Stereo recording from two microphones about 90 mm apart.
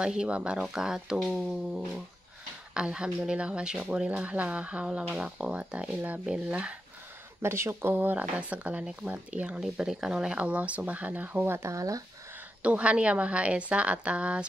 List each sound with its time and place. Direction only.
0.0 s speech: 10° right (ahead or behind)
1.2 s speech: 5° left (ahead or behind)
2.7 s speech: 10° right (ahead or behind)
7.4 s speech: 30° right (ahead or behind)
9.6 s speech: 5° right (ahead or behind); by 12.0 s 40° right (ahead or behind)
12.6 s speech: 15° right (ahead or behind)